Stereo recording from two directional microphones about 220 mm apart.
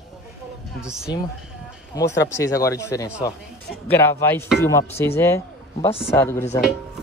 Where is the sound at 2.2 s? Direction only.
15° left (ahead or behind).